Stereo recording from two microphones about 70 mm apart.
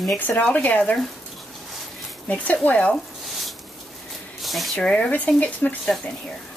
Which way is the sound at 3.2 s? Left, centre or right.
Centre.